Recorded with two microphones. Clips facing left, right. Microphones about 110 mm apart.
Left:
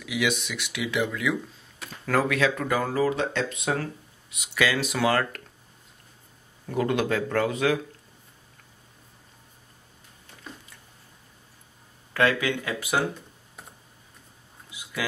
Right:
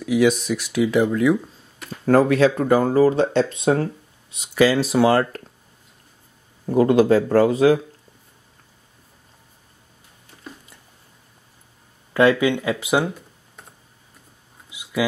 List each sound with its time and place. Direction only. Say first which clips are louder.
0.0 s speech: right 10 dB; 35° right (ahead or behind)
6.7 s speech: right 10 dB; 30° right (ahead or behind)
12.1 s speech: right 7 dB; 20° right (ahead or behind)
14.7 s a sound: right 9 dB; 15° right (ahead or behind)